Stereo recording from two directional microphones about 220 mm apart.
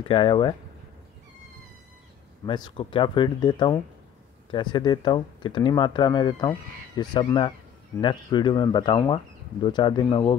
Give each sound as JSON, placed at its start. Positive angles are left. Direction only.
{"t": 0.1, "sound": "speech", "side_deg": 20}
{"t": 2.4, "sound": "speech", "side_deg": 20}